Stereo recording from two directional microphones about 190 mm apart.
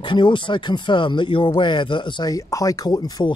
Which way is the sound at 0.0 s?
25° left (ahead or behind).